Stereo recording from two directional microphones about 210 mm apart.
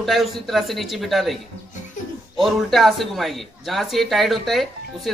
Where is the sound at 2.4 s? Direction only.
Centre (ahead or behind).